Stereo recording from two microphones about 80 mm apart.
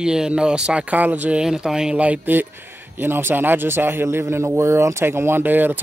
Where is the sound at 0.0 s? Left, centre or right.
Centre.